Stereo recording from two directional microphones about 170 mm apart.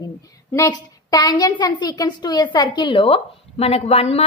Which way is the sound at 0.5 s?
20° left (ahead or behind).